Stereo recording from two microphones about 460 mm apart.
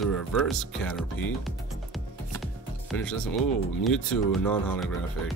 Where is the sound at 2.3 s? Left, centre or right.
Centre.